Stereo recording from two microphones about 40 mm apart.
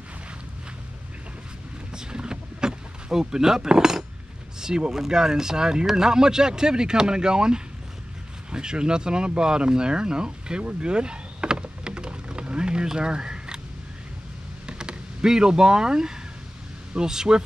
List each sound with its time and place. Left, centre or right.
2.0 s boat: right
4.6 s speech: centre
10.6 s vehicle: right
12.8 s speech: right
14.7 s speech: right